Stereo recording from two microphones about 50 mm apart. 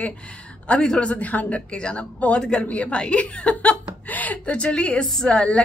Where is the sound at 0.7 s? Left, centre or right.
Centre.